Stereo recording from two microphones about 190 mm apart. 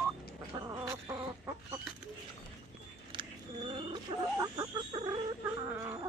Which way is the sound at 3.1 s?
25° right (ahead or behind).